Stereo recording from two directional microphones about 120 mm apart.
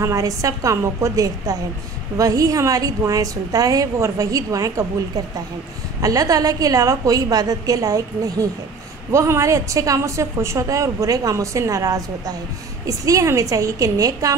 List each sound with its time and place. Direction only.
0.0 s a woman's voice: 30° right (ahead or behind)